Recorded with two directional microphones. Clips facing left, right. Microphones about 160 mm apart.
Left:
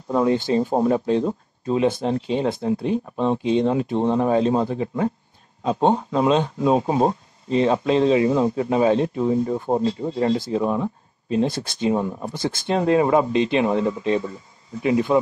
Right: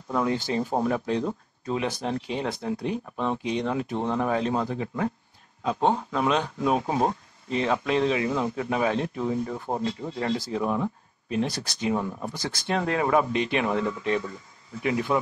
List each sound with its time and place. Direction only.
0.1 s speech: 25° left (ahead or behind)